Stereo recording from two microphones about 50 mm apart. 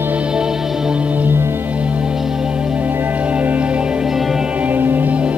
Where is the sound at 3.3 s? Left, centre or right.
Right.